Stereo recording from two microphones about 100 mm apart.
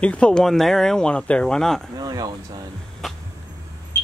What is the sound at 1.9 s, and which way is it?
Speech, 40° right (ahead or behind).